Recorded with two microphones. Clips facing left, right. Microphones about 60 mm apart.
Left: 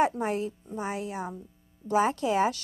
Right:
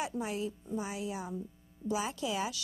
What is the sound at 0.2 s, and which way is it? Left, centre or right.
A woman's voice, left.